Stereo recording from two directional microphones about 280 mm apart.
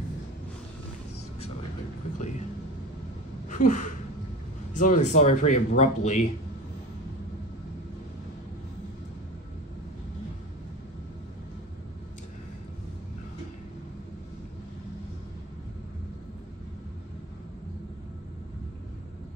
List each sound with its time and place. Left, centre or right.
2.1 s vehicle: left
3.4 s a sound: left
4.7 s speech: left